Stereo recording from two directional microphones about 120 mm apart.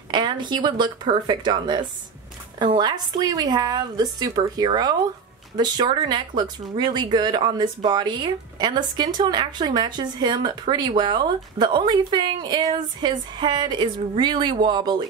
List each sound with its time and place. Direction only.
0.1 s speech: 40° right (ahead or behind)